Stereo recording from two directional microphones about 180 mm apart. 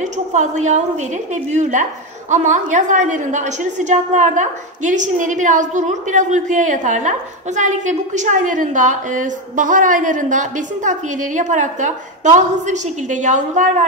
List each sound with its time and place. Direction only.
0.0 s a woman's voice: 40° right (ahead or behind)